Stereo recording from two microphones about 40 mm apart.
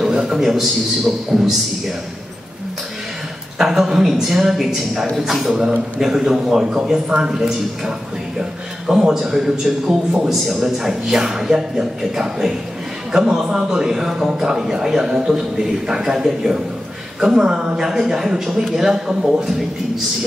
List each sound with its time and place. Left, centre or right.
0.0 s a sound: centre
0.4 s a man's voice: centre
3.5 s a man's voice: centre
6.6 s a man's voice: right